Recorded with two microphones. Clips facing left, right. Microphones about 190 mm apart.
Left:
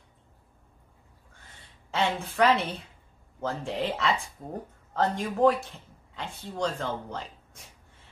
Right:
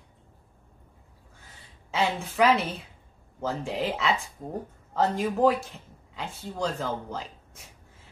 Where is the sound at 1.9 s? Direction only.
5° right (ahead or behind).